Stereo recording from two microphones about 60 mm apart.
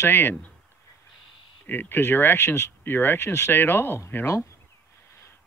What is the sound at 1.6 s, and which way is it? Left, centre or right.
Speech, left.